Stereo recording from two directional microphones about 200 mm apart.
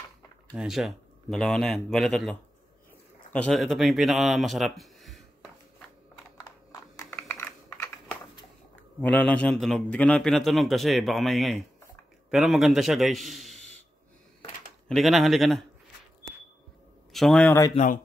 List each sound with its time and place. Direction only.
0.5 s a man's voice: centre (ahead or behind)
3.3 s speech: 5° left (ahead or behind)
6.7 s a sound: 15° left (ahead or behind)
7.2 s typing: 10° left (ahead or behind)
9.0 s a man's voice: 5° left (ahead or behind)
14.9 s a man's voice: centre (ahead or behind)
17.1 s a man's voice: centre (ahead or behind)
17.7 s speech: 40° left (ahead or behind)